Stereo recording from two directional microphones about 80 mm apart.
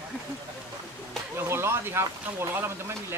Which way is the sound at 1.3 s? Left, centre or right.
Right.